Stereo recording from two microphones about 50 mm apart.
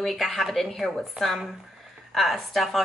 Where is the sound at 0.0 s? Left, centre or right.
Centre.